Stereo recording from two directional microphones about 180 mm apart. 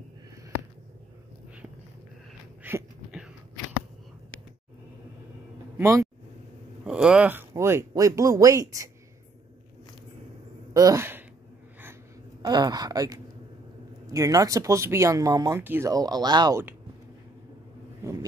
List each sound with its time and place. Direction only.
2.6 s a sound: 10° right (ahead or behind)
5.8 s speech: 15° right (ahead or behind)
6.8 s speech: 5° right (ahead or behind)
10.7 s speech: 20° right (ahead or behind)
11.8 s a sound: 15° right (ahead or behind)
14.0 s speech: 20° right (ahead or behind)
18.0 s speech: 15° right (ahead or behind)